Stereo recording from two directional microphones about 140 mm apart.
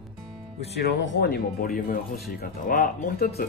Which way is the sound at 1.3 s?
90° left.